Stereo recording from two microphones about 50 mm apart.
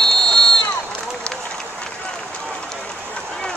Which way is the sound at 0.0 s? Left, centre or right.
Centre.